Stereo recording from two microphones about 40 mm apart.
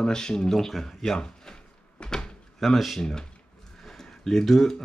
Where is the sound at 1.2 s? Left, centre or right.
Centre.